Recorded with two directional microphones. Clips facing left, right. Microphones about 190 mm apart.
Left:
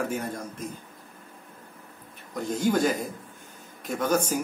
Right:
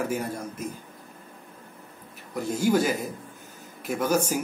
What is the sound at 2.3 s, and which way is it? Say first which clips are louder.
Speech: right 2 dB; 10° right (ahead or behind).